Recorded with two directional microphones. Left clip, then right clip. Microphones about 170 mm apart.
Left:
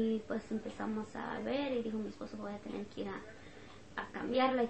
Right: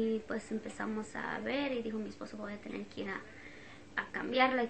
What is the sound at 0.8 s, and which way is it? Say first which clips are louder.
Speech: right 2 dB; 20° right (ahead or behind).